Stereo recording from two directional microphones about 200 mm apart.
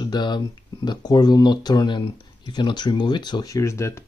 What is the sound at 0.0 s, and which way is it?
Speech, 20° left (ahead or behind).